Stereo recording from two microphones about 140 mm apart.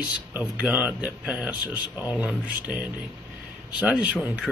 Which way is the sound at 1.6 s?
30° left (ahead or behind).